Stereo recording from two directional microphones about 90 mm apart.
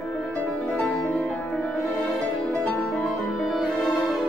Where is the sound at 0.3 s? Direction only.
15° left (ahead or behind).